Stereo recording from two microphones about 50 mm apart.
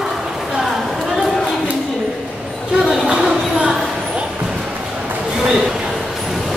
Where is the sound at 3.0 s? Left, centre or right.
Centre.